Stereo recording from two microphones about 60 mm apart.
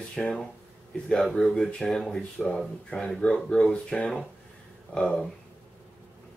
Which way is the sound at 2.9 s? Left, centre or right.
Centre.